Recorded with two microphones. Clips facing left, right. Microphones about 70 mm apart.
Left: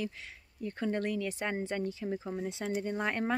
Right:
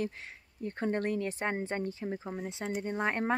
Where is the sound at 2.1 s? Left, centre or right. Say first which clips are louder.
Left 1 dB; centre.